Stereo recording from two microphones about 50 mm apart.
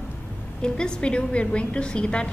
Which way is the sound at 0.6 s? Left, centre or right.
Centre.